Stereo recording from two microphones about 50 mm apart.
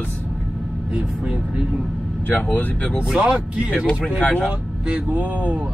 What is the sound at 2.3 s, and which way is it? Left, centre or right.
Speech, left.